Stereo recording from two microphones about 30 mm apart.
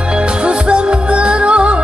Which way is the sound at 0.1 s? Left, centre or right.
Right.